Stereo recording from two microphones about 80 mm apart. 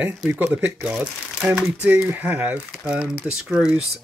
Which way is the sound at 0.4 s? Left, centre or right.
Right.